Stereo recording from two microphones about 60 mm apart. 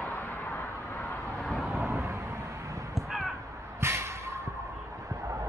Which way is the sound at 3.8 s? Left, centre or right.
Right.